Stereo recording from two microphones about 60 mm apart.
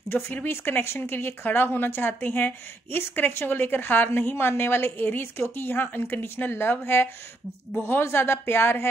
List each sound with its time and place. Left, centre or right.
0.1 s speech: left